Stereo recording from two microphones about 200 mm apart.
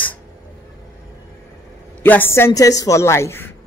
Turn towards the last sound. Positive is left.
turn(degrees=10)  # may be behind; listen again after turning